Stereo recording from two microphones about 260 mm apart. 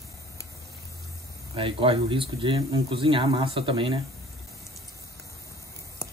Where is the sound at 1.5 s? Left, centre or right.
Centre.